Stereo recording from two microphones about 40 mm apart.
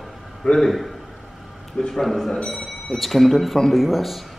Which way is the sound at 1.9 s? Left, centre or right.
Centre.